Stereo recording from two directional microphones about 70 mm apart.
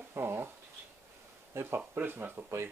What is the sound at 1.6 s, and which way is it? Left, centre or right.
Speech, right.